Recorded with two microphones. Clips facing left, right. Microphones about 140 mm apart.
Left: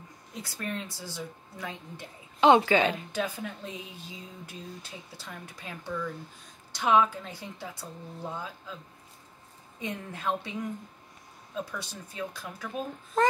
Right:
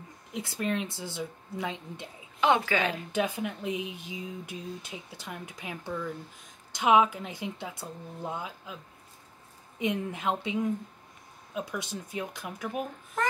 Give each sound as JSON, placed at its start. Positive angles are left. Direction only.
{"t": 0.3, "sound": "speech", "side_deg": -20}
{"t": 2.4, "sound": "a woman's voice", "side_deg": 25}
{"t": 3.1, "sound": "speech", "side_deg": -20}
{"t": 9.8, "sound": "speech", "side_deg": -20}